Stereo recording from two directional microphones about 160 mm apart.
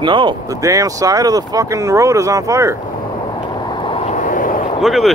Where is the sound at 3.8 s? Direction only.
35° left (ahead or behind); by 4.5 s 55° left (ahead or behind).